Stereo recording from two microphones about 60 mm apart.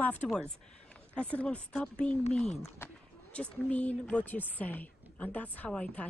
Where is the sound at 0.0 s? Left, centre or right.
Left.